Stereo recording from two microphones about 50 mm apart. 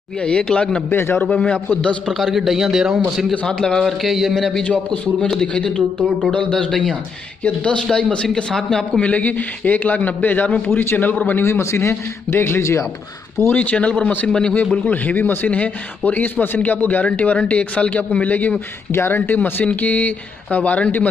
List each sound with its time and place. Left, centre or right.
0.2 s speech: left
0.8 s a man's voice: left
1.2 s speech: left
2.0 s a man's voice: centre
3.4 s a man's voice: centre
3.8 s a man's voice: centre
4.6 s a man's voice: left
9.0 s a man's voice: left
11.4 s a man's voice: left
11.9 s a man's voice: left
13.5 s a man's voice: left
18.9 s speech: left
19.1 s a man's voice: left